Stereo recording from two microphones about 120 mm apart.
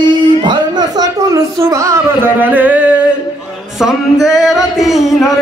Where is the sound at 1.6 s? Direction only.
25° right (ahead or behind).